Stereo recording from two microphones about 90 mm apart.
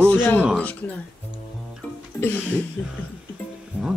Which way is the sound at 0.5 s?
15° left (ahead or behind).